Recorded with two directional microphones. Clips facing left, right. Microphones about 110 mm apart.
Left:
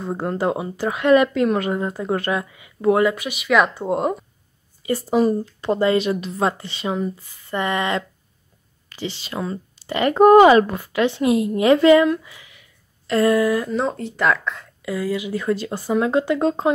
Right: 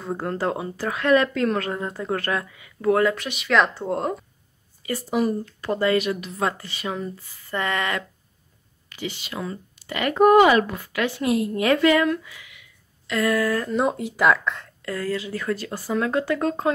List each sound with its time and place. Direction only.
0.0 s speech: 20° left (ahead or behind)
4.8 s a woman's voice: 30° left (ahead or behind)
13.8 s speech: 10° right (ahead or behind); by 16.7 s 20° left (ahead or behind)